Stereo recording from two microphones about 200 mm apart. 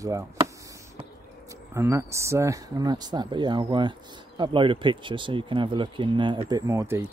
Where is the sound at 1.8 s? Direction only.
15° right (ahead or behind).